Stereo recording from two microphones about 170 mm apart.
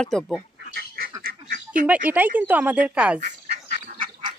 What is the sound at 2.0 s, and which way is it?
Speech, 10° right (ahead or behind).